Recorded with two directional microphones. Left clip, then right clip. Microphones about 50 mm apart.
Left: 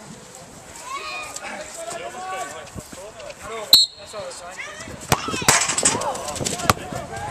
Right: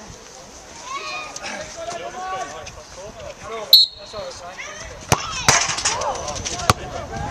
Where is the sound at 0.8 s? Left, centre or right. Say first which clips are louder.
Right 1 dB; centre.